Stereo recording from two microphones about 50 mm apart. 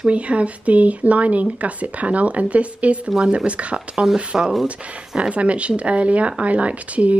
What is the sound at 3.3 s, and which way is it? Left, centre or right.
Speech, right.